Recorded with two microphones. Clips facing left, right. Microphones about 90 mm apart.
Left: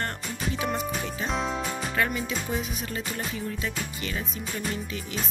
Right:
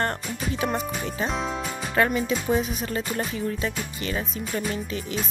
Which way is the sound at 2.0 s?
40° right (ahead or behind).